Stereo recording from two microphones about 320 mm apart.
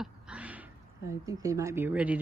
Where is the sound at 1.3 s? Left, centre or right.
Centre.